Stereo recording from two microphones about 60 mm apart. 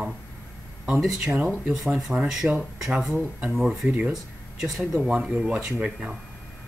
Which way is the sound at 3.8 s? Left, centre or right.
Centre.